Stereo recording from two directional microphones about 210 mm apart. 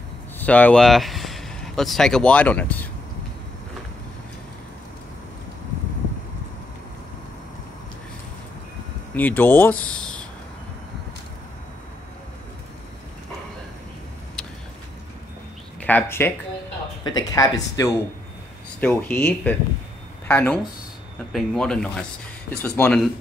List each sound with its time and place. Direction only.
0.4 s speech: 5° left (ahead or behind)
9.1 s speech: 10° left (ahead or behind)
15.8 s speech: 10° left (ahead or behind)